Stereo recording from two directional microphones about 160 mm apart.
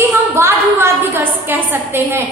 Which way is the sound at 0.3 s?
15° right (ahead or behind).